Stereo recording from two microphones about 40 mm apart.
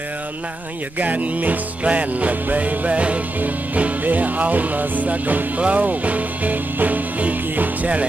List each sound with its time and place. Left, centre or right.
0.9 s music: right